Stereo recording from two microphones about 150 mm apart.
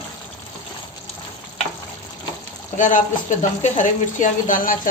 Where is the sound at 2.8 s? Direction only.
55° left (ahead or behind).